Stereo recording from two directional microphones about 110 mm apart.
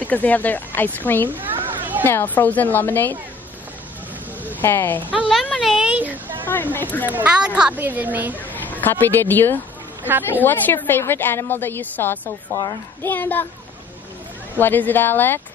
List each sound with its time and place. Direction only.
0.0 s speech: 15° left (ahead or behind)
1.3 s children playing: 20° right (ahead or behind)
2.0 s speech: 20° left (ahead or behind)
4.6 s speech: 20° left (ahead or behind)
5.0 s speech: 10° right (ahead or behind)
5.6 s a sound: 5° right (ahead or behind)
6.4 s speech: 15° left (ahead or behind)
7.1 s speech: 10° right (ahead or behind)
8.8 s a woman's voice: 20° left (ahead or behind)
14.6 s a woman's voice: 15° left (ahead or behind)